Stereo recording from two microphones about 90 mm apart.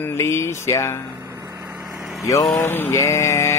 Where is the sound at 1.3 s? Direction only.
40° right (ahead or behind).